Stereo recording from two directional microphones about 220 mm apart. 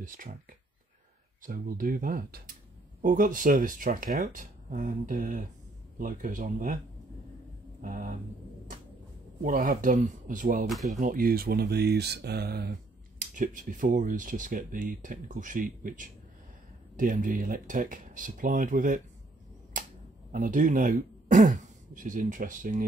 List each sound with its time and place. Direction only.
0.0 s speech: 40° right (ahead or behind)
1.4 s speech: 40° right (ahead or behind)
7.8 s speech: 40° right (ahead or behind)
9.4 s speech: 40° right (ahead or behind)
10.7 s speech: centre (ahead or behind)
11.0 s speech: 40° right (ahead or behind)
19.7 s camera: 40° right (ahead or behind)
20.2 s speech: 35° right (ahead or behind)